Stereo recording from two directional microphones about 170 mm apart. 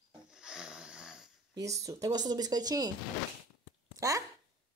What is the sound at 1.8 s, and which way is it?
Speech, 20° right (ahead or behind).